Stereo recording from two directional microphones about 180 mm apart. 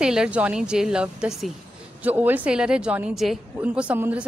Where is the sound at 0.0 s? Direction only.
5° right (ahead or behind).